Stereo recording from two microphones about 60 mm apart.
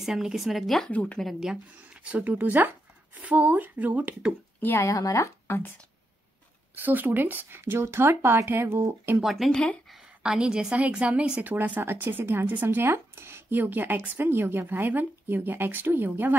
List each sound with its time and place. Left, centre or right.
0.0 s speech: centre
0.8 s speech: centre
2.0 s speech: right
4.6 s speech: left
4.8 s speech: left
6.7 s speech: right
9.2 s speech: centre
9.5 s speech: centre
10.2 s a woman's voice: centre
11.4 s speech: right